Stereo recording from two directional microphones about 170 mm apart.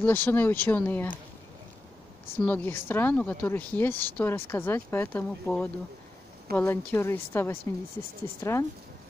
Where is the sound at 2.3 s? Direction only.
10° left (ahead or behind).